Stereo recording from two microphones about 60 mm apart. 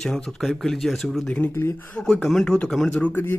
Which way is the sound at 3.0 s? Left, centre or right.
Left.